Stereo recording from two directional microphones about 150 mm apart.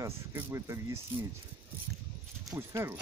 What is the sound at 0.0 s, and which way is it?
Speech, 20° right (ahead or behind).